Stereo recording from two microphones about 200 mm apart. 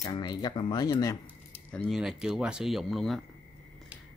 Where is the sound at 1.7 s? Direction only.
5° left (ahead or behind).